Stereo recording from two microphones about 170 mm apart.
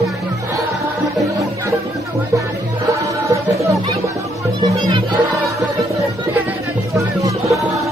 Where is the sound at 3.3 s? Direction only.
20° right (ahead or behind).